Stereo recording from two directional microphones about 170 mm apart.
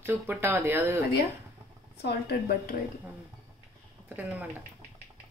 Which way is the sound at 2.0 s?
70° left (ahead or behind).